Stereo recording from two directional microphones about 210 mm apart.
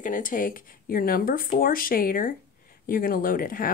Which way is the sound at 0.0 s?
40° left (ahead or behind).